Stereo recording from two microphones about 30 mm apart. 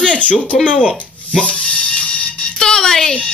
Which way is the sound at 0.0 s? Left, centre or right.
Left.